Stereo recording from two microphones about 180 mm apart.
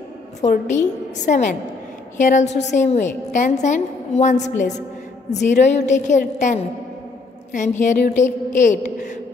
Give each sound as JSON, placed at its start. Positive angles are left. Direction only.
{"t": 0.4, "sound": "a woman's voice", "side_deg": 40}